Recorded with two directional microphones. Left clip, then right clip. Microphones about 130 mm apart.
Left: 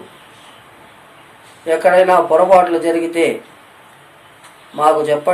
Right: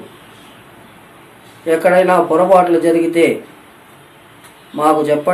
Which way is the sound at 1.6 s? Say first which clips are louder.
Even; centre (ahead or behind).